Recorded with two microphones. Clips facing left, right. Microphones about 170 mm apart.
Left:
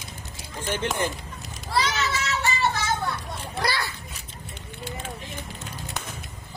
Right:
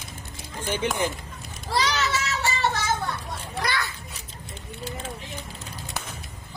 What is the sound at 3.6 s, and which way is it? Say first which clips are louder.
Children playing: left 1 dB; 30° left (ahead or behind).